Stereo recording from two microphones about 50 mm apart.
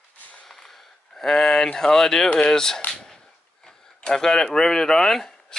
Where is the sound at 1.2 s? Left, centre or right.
Centre.